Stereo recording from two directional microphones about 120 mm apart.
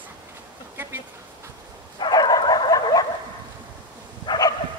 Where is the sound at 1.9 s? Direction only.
35° left (ahead or behind).